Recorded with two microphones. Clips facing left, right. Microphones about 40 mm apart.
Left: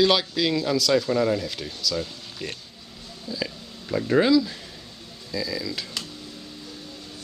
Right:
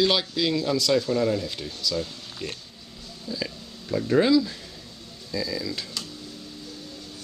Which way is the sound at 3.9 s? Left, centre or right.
Centre.